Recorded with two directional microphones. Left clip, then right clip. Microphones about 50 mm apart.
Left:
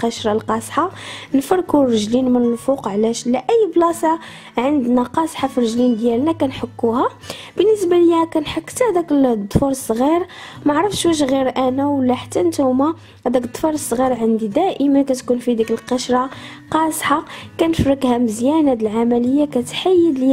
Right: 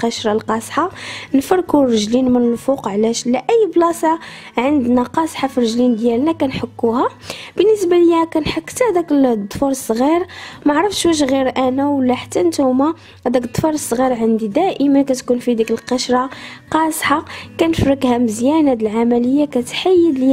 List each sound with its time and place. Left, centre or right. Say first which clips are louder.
0.0 s a woman's voice: right 1 dB; right